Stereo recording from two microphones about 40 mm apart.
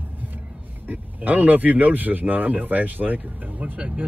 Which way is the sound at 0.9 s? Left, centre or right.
Right.